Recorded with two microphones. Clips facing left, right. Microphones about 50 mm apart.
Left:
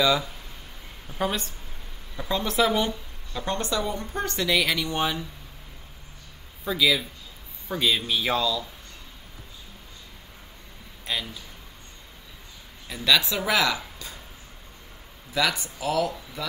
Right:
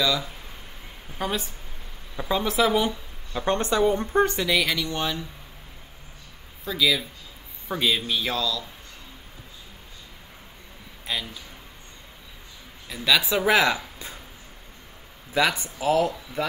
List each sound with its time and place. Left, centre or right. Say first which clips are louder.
1.1 s a man's voice: left 1 dB; centre
2.1 s speech: right 3 dB; centre
2.5 s a man's voice: even; centre
3.3 s speech: right 5 dB; right
4.5 s a man's voice: even; centre
4.7 s speech: left 1 dB; centre
6.6 s a man's voice: left 1 dB; centre
8.3 s speech: left 5 dB; centre
11.1 s a man's voice: even; centre
12.8 s speech: even; centre
13.5 s speech: right 3 dB; right
15.3 s speech: right 3 dB; right